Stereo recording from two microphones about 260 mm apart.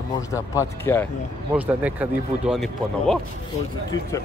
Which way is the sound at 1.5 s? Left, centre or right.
Centre.